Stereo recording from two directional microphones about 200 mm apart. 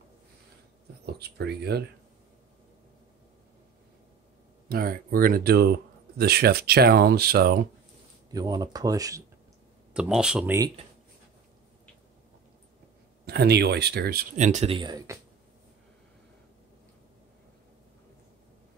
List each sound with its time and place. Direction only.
1.0 s speech: 55° right (ahead or behind)
4.6 s speech: 50° right (ahead or behind)
8.3 s speech: 20° right (ahead or behind)
9.9 s speech: 5° right (ahead or behind)
13.2 s speech: 55° right (ahead or behind)
14.3 s speech: 35° right (ahead or behind); by 15.1 s 20° right (ahead or behind)